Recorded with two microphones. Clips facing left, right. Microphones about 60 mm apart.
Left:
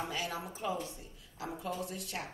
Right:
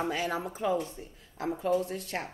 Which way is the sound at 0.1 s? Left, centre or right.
Right.